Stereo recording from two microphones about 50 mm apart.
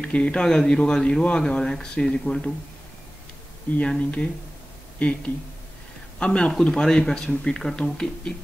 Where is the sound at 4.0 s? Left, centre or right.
Left.